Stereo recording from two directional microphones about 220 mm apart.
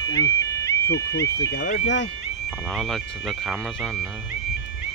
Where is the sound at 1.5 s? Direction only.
50° left (ahead or behind).